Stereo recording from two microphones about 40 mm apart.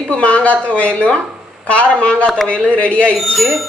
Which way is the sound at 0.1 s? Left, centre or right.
Left.